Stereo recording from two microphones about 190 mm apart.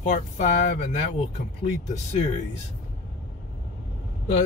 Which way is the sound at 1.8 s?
35° left (ahead or behind).